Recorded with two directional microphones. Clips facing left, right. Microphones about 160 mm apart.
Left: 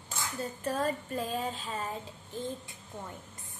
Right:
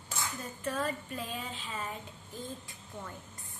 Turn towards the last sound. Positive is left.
turn(degrees=25)  # may be behind; listen again after turning